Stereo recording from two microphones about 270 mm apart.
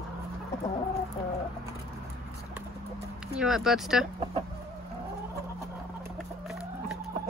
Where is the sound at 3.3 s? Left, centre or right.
Centre.